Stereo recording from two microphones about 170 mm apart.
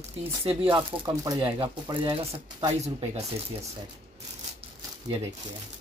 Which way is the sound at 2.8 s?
35° right (ahead or behind).